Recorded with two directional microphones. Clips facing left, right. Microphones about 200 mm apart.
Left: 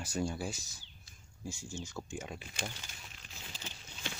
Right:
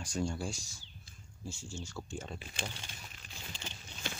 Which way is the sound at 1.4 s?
15° left (ahead or behind).